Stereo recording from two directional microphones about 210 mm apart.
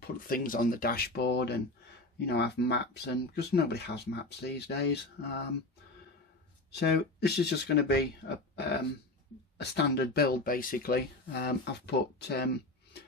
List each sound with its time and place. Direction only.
0.0 s speech: 40° left (ahead or behind)
6.7 s speech: 50° left (ahead or behind)
9.6 s speech: 55° left (ahead or behind)